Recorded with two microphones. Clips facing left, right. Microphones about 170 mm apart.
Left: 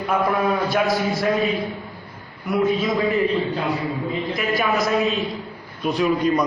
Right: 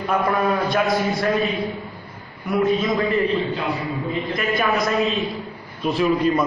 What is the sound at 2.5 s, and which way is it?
A man's voice, centre (ahead or behind).